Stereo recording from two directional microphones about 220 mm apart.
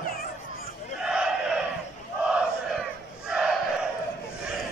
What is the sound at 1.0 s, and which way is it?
Battle cry, 5° right (ahead or behind).